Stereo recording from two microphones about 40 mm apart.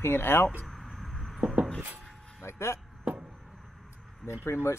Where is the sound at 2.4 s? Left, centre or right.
Left.